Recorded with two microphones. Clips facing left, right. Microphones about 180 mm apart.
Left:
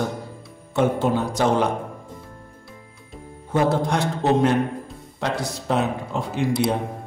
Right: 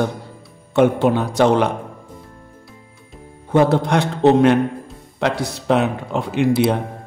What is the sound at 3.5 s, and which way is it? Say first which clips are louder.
A man's voice: right 5 dB; 70° right (ahead or behind).